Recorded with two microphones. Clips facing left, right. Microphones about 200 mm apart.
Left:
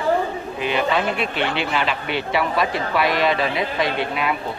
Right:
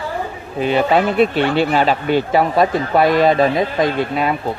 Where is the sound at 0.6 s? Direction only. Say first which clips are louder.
Right 7 dB; 40° right (ahead or behind).